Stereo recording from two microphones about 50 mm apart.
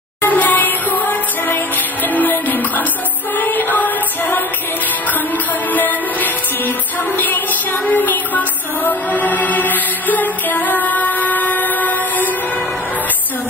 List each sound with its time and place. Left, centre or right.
0.2 s music: left
5.7 s music: left